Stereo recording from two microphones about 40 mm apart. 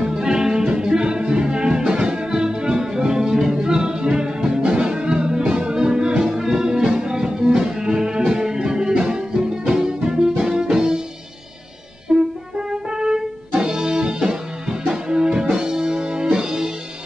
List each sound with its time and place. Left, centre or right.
0.0 s music: centre
12.1 s music: centre